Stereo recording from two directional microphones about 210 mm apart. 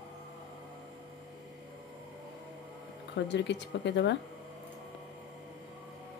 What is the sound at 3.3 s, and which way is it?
Speech, 55° left (ahead or behind).